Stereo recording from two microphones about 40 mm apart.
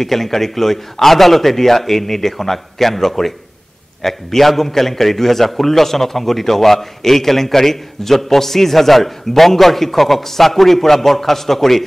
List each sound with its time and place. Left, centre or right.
0.0 s a man's voice: centre